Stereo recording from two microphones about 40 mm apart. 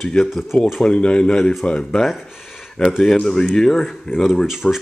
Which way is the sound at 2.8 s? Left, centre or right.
Centre.